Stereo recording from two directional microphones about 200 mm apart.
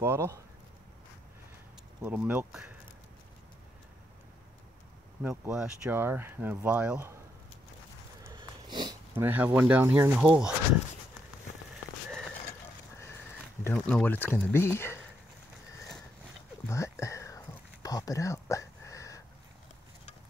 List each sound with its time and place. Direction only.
0.0 s speech: 10° right (ahead or behind)
2.0 s speech: 10° right (ahead or behind)
5.2 s speech: 5° right (ahead or behind)
8.3 s sniff: 20° right (ahead or behind)
9.1 s speech: 10° right (ahead or behind)
12.9 s horse: 15° left (ahead or behind)
13.7 s speech: 5° left (ahead or behind)
16.6 s a sound: 15° left (ahead or behind)